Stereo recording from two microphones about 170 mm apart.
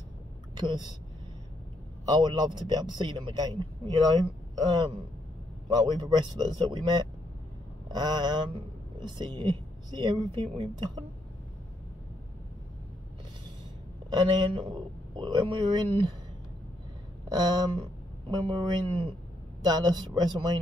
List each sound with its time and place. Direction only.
0.6 s speech: 25° right (ahead or behind)
2.0 s a man's voice: 25° right (ahead or behind)
14.1 s speech: 25° right (ahead or behind)
17.3 s speech: 25° right (ahead or behind)